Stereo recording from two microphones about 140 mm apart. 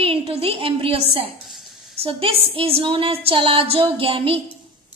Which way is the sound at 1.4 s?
Centre (ahead or behind).